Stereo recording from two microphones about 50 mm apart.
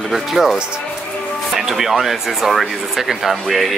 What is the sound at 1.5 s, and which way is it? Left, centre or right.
Speech, centre.